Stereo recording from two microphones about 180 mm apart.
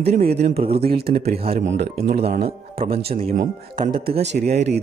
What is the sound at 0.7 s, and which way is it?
Speech, 60° right (ahead or behind).